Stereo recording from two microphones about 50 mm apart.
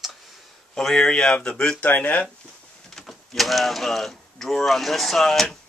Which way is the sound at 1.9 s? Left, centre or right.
Left.